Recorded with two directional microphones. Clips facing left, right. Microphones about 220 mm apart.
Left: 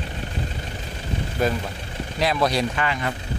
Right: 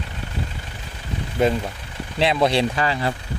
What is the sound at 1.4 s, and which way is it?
Speech, 25° right (ahead or behind).